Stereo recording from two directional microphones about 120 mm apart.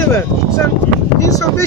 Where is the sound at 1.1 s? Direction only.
30° left (ahead or behind).